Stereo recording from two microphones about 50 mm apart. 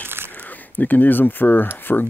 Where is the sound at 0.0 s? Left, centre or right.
Right.